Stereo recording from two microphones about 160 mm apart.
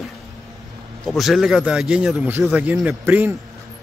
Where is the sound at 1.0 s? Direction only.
Centre (ahead or behind).